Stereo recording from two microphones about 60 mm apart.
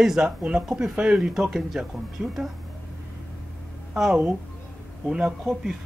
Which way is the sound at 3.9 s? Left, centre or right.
Centre.